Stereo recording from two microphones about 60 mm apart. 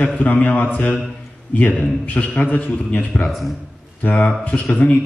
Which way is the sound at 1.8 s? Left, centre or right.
Left.